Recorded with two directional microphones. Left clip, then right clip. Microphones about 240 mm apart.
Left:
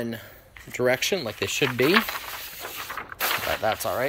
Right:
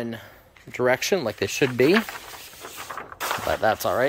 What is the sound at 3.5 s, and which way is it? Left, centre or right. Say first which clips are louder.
Speech: right 3 dB; right.